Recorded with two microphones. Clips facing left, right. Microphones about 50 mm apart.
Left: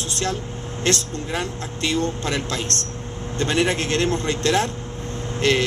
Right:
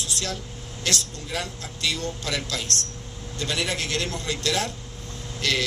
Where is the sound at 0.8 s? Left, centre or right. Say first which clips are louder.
Left 6 dB; left.